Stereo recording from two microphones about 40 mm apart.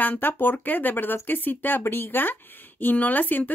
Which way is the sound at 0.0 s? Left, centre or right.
Left.